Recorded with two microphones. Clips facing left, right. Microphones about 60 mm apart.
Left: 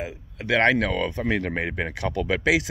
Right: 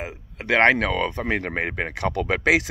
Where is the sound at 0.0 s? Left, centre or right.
Right.